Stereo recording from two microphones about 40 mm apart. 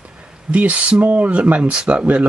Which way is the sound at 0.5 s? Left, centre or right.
Right.